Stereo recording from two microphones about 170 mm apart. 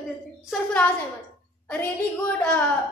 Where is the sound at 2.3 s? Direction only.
5° left (ahead or behind).